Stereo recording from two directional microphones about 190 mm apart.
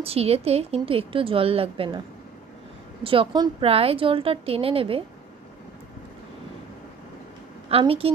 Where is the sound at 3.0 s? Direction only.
30° right (ahead or behind).